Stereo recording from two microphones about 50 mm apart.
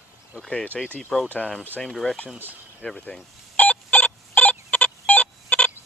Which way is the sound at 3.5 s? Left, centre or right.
Left.